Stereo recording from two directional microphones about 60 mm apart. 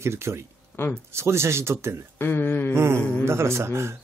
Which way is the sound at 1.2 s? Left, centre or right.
Right.